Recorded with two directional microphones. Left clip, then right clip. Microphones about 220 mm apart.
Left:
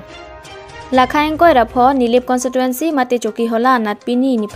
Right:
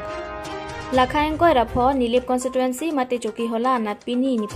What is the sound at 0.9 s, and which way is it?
Speech, 25° left (ahead or behind).